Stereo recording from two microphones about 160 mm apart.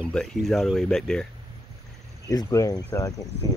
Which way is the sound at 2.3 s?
20° left (ahead or behind).